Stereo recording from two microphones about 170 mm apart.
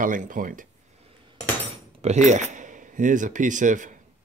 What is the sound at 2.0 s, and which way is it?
Speech, 40° right (ahead or behind).